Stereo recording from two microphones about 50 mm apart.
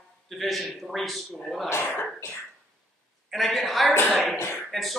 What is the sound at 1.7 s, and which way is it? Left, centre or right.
Speech, left.